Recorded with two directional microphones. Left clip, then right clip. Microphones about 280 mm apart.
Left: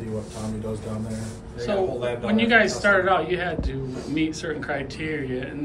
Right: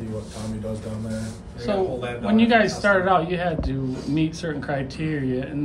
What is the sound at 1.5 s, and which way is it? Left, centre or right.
A man's voice, centre.